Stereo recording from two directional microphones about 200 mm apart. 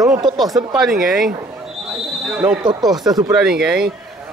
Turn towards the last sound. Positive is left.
turn(degrees=0)  # may be behind; listen again after turning